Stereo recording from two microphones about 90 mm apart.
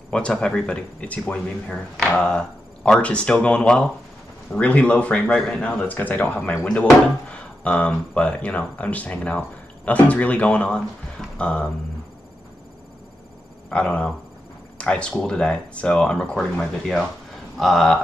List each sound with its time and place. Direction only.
0.1 s speech: 10° left (ahead or behind)
13.7 s speech: 15° left (ahead or behind)